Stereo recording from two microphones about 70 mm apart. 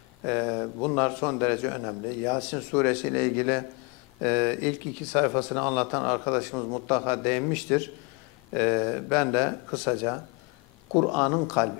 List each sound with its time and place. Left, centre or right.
0.2 s speech: centre